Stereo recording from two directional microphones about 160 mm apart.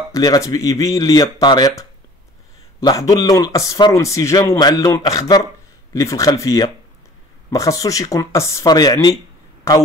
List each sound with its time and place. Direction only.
0.1 s a man's voice: 20° left (ahead or behind)